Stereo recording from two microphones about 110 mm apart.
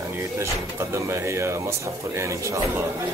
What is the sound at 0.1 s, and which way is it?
Speech, 25° right (ahead or behind).